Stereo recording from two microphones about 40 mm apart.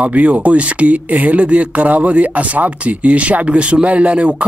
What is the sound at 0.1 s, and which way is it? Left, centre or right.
Speech, right.